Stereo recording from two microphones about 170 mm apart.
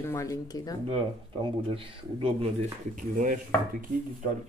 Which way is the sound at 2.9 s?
50° right (ahead or behind).